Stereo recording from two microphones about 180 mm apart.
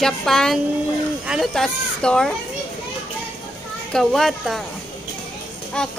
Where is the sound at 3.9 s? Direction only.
Centre (ahead or behind).